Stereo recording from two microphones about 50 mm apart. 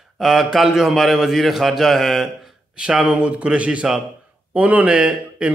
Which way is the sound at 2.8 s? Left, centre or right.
Centre.